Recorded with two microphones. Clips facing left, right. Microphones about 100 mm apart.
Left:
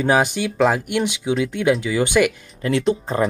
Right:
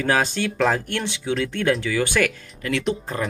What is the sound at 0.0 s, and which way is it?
Speech, 15° left (ahead or behind).